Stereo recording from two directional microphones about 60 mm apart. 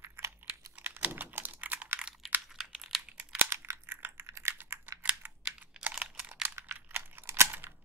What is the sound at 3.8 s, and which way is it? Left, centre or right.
Computer keyboard, right.